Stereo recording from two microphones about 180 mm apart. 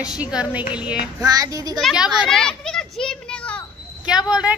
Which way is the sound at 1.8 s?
5° right (ahead or behind).